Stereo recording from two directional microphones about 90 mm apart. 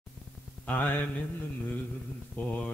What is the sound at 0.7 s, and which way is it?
Speech, 20° left (ahead or behind).